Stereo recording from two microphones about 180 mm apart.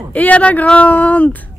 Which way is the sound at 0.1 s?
10° left (ahead or behind).